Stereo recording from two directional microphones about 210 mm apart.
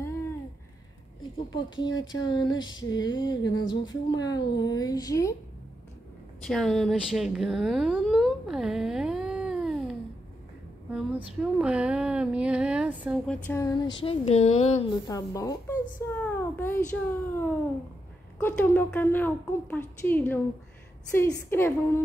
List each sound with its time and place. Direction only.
1.5 s a woman's voice: 20° left (ahead or behind)
6.4 s speech: centre (ahead or behind)
10.9 s a sound: 5° right (ahead or behind)
13.3 s speech: 10° left (ahead or behind); by 14.9 s 30° left (ahead or behind)
15.0 s a child's voice: 15° left (ahead or behind)